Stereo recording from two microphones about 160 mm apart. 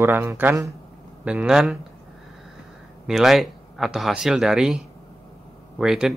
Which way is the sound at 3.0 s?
Centre (ahead or behind).